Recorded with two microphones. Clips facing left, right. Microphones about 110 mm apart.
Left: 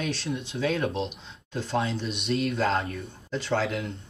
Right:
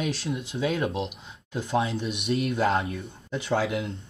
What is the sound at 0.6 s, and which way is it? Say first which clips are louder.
Speech: even; 5° right (ahead or behind).